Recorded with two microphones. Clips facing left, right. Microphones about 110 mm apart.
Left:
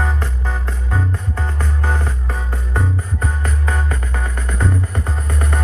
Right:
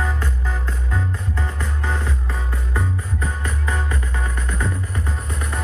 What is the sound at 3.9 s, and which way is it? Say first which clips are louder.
Music: left 2 dB; 50° left (ahead or behind).